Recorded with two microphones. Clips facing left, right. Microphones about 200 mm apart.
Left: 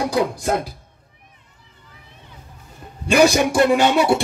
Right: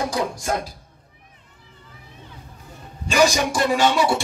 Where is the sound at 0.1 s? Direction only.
55° left (ahead or behind).